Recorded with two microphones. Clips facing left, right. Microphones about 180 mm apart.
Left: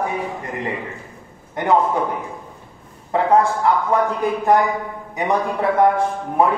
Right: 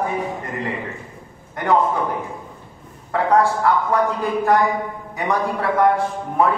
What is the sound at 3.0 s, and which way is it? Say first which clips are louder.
A man's voice: left 1 dB; 20° left (ahead or behind).